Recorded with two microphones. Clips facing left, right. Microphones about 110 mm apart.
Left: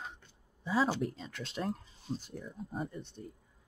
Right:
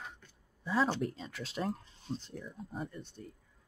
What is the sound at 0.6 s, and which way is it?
Speech, 5° left (ahead or behind).